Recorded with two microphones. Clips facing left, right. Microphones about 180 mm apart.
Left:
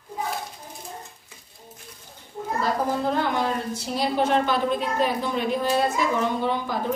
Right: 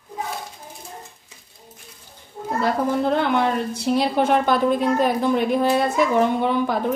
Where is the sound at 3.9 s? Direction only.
50° right (ahead or behind).